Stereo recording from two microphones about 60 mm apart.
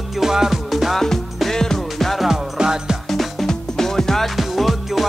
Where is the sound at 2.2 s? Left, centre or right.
Centre.